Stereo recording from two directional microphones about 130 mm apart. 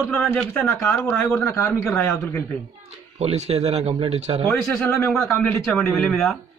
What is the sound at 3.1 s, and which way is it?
Speech, 55° right (ahead or behind).